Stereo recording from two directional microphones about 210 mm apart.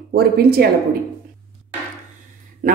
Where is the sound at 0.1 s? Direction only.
50° right (ahead or behind).